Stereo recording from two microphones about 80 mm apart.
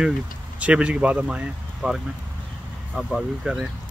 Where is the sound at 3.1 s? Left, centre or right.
Centre.